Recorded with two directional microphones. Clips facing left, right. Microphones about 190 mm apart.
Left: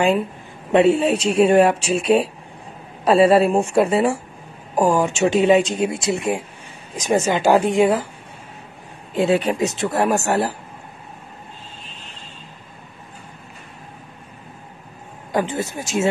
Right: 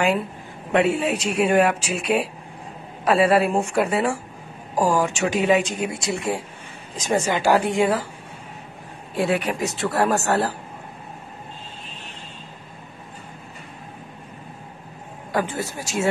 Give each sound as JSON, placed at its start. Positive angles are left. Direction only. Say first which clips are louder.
{"t": 0.7, "sound": "speech", "louder": "left 5 dB", "side_deg": 25}
{"t": 9.1, "sound": "speech", "louder": "left 4 dB", "side_deg": 25}
{"t": 15.3, "sound": "speech", "louder": "left 3 dB", "side_deg": 20}